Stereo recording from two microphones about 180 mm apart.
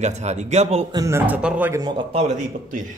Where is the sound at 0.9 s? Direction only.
15° right (ahead or behind).